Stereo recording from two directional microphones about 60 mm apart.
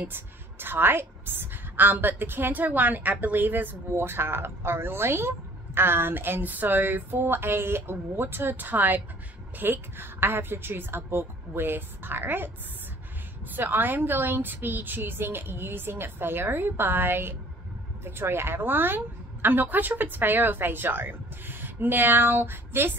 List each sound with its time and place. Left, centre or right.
0.0 s a woman's voice: right
13.5 s a woman's voice: right